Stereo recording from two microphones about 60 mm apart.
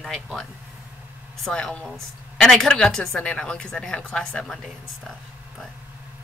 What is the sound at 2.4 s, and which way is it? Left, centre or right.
A woman's voice, centre.